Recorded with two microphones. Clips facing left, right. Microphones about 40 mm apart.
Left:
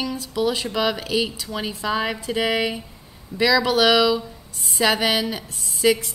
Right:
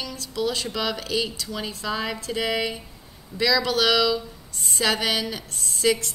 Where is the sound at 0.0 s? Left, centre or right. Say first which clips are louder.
Left 4 dB; centre.